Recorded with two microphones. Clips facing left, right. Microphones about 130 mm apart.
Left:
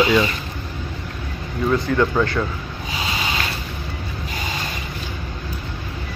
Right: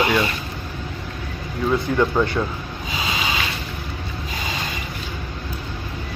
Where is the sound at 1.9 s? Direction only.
15° right (ahead or behind).